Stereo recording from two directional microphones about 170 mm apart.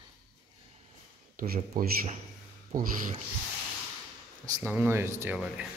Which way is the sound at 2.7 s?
50° right (ahead or behind).